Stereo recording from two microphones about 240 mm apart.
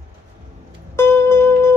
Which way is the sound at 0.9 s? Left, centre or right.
Centre.